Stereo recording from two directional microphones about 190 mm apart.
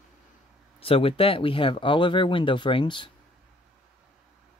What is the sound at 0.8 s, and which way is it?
Speech, 30° left (ahead or behind).